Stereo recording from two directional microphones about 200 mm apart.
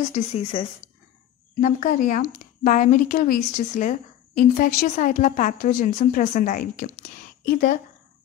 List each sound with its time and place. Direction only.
0.1 s speech: 30° left (ahead or behind)
1.6 s a woman's voice: 40° left (ahead or behind)